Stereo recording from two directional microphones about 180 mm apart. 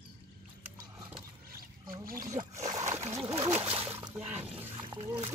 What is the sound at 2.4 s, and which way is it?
Speech, 30° right (ahead or behind).